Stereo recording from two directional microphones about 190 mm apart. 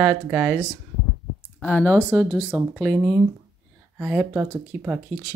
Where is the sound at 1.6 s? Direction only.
10° left (ahead or behind).